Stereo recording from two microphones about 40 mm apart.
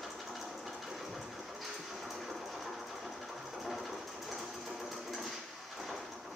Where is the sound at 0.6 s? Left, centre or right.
Centre.